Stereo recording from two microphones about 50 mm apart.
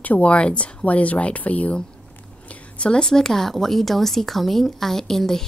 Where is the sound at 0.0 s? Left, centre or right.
Left.